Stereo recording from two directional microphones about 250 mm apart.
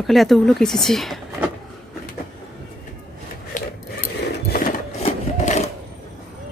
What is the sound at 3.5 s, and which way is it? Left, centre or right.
Rub, left.